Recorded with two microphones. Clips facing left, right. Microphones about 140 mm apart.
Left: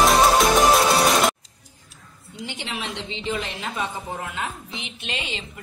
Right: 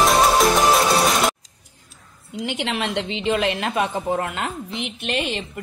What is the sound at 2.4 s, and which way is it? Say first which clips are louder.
A woman's voice: right 7 dB; 70° right (ahead or behind).